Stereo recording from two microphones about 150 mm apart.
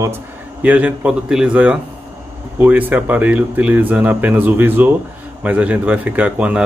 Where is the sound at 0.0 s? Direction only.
15° right (ahead or behind).